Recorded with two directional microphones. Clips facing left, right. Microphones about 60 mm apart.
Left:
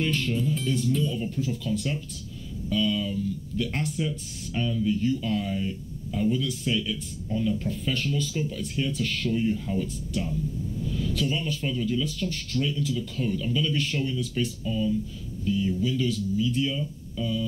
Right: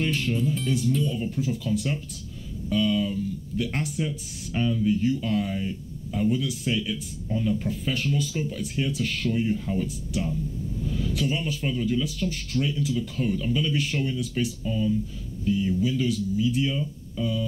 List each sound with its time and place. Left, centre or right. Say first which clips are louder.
0.0 s speech: right 1 dB; centre
0.6 s speech: right 1 dB; centre
1.0 s speech: right 1 dB; centre
7.7 s speech: right 1 dB; centre
11.1 s speech: right 1 dB; centre